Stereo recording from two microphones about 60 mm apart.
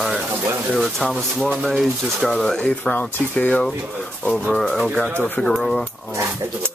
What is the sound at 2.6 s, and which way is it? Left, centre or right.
Speech, left.